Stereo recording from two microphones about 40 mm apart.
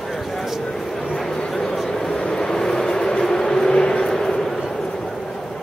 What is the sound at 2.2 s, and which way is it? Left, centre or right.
Vehicle, centre.